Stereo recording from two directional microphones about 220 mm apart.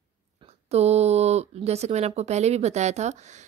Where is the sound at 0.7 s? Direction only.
30° right (ahead or behind).